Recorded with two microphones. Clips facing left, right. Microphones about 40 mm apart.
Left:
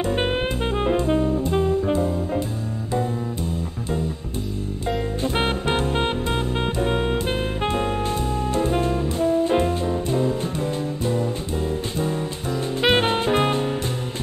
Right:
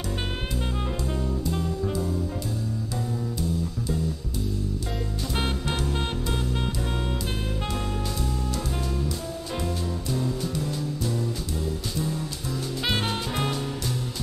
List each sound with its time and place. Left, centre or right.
0.0 s music: left
4.8 s music: left